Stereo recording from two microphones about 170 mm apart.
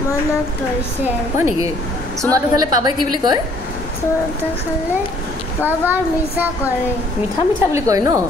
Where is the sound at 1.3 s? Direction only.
15° right (ahead or behind).